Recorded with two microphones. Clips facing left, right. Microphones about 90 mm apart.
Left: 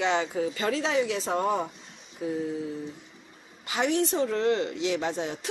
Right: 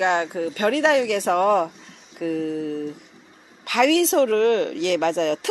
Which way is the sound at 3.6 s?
85° right.